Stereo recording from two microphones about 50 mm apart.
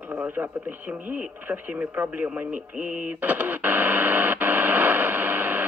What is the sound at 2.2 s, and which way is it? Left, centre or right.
Radio, right.